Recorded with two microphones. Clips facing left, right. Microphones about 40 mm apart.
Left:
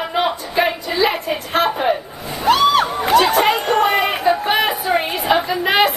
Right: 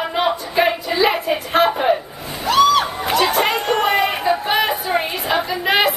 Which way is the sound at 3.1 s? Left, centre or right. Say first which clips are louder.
Left 4 dB; centre.